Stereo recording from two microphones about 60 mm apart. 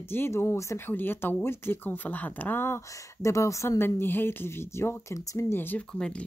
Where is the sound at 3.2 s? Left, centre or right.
Left.